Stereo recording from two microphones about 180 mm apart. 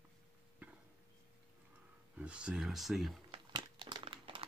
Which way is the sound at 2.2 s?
5° right (ahead or behind).